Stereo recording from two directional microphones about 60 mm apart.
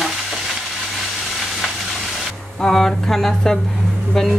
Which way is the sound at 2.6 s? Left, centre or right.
Centre.